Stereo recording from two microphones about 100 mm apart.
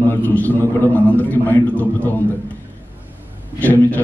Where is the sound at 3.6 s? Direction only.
15° left (ahead or behind).